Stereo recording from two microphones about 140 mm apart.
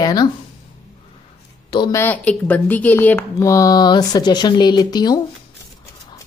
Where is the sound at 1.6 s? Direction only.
35° left (ahead or behind).